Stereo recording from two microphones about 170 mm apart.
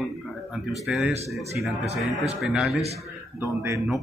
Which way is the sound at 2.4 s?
Centre (ahead or behind).